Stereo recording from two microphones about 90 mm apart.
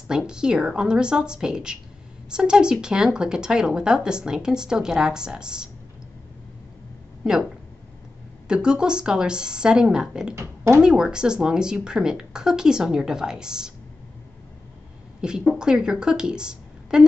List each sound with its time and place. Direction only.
0.1 s speech: 10° right (ahead or behind)
7.2 s speech: 5° right (ahead or behind)
8.5 s speech: 10° right (ahead or behind)
10.3 s speech: 30° right (ahead or behind)
10.8 s speech: 10° right (ahead or behind)
15.5 s a woman's voice: 10° right (ahead or behind)